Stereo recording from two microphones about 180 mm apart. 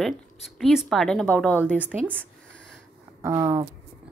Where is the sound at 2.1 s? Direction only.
5° left (ahead or behind).